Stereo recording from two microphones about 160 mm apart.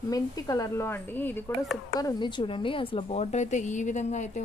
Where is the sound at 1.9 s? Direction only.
25° left (ahead or behind).